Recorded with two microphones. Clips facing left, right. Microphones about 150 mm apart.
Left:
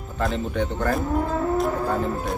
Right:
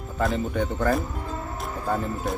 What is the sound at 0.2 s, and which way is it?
Speech, centre (ahead or behind).